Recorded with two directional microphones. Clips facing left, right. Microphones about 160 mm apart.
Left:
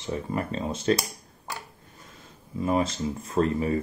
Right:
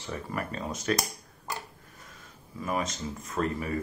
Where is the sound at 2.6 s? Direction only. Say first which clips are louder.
Left 6 dB; 30° left (ahead or behind).